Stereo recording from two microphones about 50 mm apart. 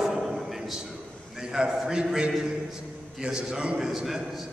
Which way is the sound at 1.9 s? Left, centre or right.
Centre.